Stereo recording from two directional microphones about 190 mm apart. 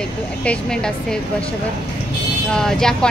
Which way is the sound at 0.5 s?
5° left (ahead or behind).